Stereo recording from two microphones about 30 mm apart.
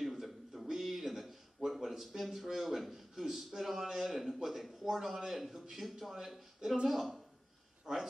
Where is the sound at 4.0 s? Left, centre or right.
Centre.